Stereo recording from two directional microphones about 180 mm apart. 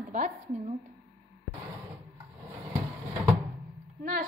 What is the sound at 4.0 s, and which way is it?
Speech, 45° right (ahead or behind).